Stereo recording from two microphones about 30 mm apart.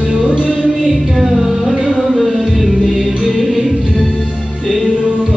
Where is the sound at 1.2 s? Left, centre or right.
Centre.